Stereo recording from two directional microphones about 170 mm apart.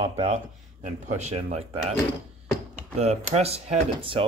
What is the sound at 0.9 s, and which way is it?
Speech, 45° right (ahead or behind).